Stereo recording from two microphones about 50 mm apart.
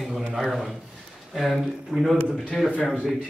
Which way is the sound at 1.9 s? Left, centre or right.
Right.